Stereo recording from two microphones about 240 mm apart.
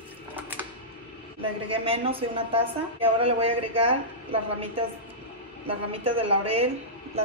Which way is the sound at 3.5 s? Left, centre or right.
Right.